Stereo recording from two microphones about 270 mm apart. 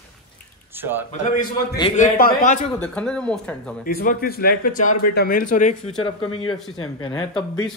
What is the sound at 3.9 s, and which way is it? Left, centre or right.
A man's voice, left.